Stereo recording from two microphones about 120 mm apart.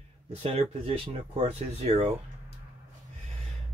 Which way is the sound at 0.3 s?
60° right (ahead or behind).